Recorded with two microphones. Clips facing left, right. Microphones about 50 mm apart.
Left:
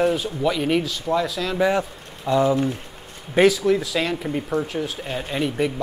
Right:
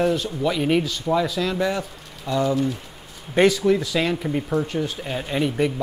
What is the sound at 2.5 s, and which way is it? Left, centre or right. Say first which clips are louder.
Speech: left 1 dB; left.